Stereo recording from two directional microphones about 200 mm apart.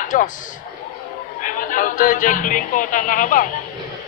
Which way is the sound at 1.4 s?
40° left (ahead or behind).